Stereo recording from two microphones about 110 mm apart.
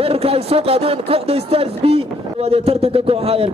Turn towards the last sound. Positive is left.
turn(degrees=-65)  # may be behind; listen again after turning